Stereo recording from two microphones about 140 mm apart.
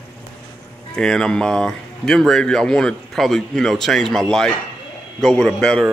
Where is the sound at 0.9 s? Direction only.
5° left (ahead or behind).